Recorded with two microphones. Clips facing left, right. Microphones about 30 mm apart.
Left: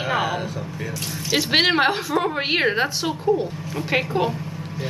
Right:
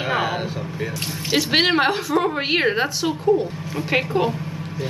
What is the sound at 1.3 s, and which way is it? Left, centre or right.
A woman's voice, centre.